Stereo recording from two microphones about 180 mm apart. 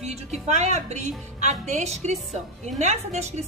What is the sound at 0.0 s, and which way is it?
A woman's voice, 40° right (ahead or behind).